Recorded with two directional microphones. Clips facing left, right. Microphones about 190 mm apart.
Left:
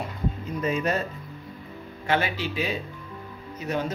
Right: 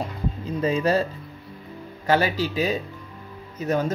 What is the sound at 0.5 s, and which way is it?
Speech, 30° right (ahead or behind).